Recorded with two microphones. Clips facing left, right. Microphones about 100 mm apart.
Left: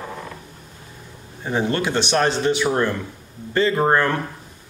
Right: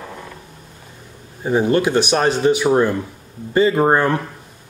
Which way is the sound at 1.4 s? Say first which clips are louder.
Right 6 dB; 15° right (ahead or behind).